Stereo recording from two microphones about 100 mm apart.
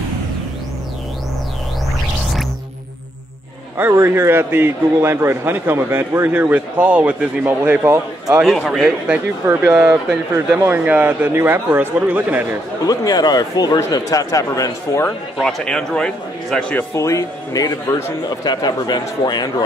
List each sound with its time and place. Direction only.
3.7 s a man's voice: 20° right (ahead or behind)
8.6 s a man's voice: centre (ahead or behind)
9.5 s speech: 15° right (ahead or behind)
10.3 s a man's voice: 30° right (ahead or behind)
10.9 s a man's voice: 20° right (ahead or behind)
12.8 s a man's voice: 40° left (ahead or behind)
15.4 s a man's voice: 5° left (ahead or behind)
16.9 s a man's voice: 30° left (ahead or behind)
18.3 s a man's voice: 45° left (ahead or behind)